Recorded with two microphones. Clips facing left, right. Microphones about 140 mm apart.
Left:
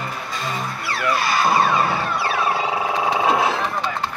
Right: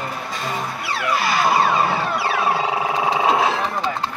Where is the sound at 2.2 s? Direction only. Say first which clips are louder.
Right 1 dB; 25° right (ahead or behind).